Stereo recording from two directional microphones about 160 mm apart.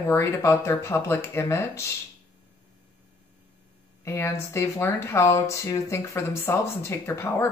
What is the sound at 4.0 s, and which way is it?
A woman's voice, 15° left (ahead or behind).